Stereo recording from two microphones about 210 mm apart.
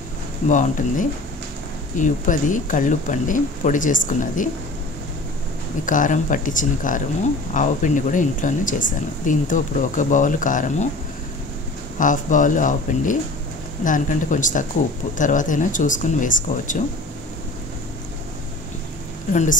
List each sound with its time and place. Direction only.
0.5 s speech: 35° left (ahead or behind)
5.9 s speech: 40° left (ahead or behind)
12.0 s speech: 40° left (ahead or behind)